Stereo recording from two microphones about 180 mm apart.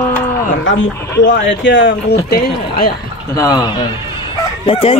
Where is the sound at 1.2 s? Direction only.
90° left; by 2.9 s 60° left (ahead or behind).